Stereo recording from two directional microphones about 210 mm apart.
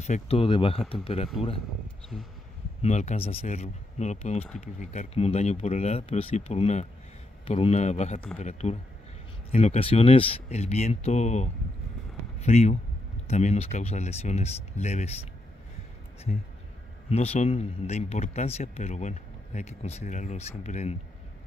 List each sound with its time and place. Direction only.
0.0 s speech: 30° left (ahead or behind)
2.8 s speech: 35° left (ahead or behind)
17.1 s speech: 30° left (ahead or behind)